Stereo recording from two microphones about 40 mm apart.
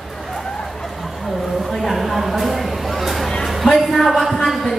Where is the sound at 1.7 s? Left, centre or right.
Centre.